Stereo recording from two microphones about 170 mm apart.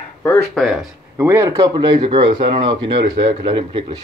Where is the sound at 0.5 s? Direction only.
5° right (ahead or behind).